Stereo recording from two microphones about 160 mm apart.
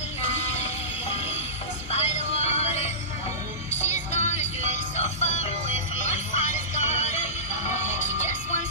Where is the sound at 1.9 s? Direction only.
40° left (ahead or behind).